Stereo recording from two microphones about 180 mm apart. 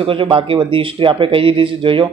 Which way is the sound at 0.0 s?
30° right (ahead or behind).